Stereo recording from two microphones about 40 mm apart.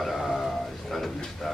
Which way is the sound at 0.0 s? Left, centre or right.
Centre.